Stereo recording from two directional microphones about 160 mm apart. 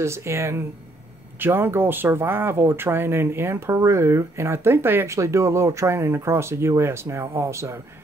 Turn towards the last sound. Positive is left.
turn(degrees=-20)  # may be behind; listen again after turning